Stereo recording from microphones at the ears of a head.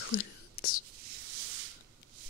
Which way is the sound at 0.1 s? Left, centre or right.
Left.